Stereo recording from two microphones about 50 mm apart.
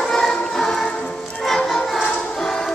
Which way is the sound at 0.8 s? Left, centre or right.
Centre.